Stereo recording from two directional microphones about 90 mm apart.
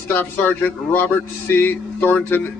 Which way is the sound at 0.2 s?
20° left (ahead or behind).